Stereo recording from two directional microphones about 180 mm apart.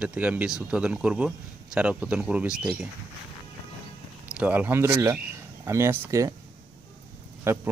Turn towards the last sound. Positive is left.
turn(degrees=-15)  # may be behind; listen again after turning